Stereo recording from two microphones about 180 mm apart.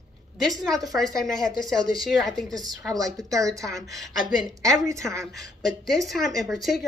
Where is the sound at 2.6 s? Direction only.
20° right (ahead or behind).